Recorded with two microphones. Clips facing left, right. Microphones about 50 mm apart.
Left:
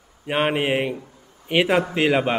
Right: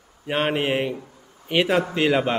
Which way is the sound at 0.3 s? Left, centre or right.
Centre.